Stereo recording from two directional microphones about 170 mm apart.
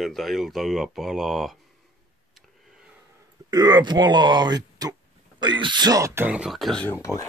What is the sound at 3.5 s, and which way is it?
Speech, 25° right (ahead or behind).